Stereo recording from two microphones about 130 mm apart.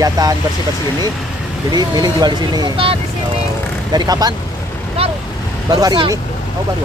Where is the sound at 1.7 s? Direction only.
30° right (ahead or behind).